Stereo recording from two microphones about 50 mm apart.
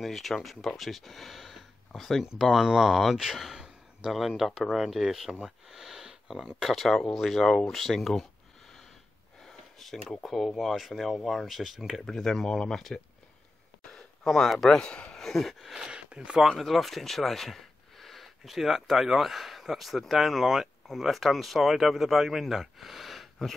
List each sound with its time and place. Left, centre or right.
0.0 s speech: centre
7.4 s speech: centre
7.7 s speech: centre
9.4 s a sound: centre
10.2 s speech: centre
12.0 s speech: centre
13.9 s speech: centre
14.8 s a man's voice: centre
15.1 s speech: centre
15.7 s speech: centre
16.4 s speech: centre